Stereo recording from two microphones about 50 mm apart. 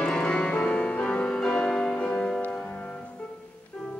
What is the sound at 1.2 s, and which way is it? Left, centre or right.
Music, centre.